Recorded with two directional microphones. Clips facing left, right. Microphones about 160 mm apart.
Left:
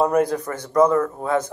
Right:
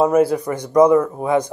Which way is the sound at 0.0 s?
5° right (ahead or behind).